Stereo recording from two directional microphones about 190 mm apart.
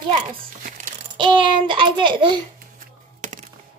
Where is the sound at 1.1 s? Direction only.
25° right (ahead or behind).